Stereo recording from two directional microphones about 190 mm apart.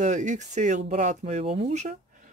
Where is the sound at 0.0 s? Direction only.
40° right (ahead or behind).